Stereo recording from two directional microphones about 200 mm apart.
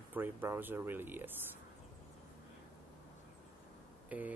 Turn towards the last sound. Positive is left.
turn(degrees=-5)  # may be behind; listen again after turning